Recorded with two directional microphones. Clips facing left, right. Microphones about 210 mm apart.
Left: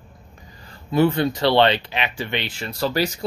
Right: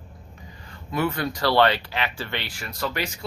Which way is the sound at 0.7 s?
30° left (ahead or behind).